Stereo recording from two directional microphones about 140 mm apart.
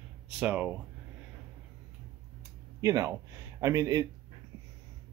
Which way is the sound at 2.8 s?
25° right (ahead or behind).